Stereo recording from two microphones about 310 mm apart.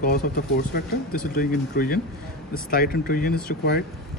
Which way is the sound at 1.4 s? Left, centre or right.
Left.